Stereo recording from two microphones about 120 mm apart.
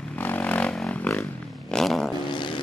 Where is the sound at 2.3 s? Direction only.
40° left (ahead or behind).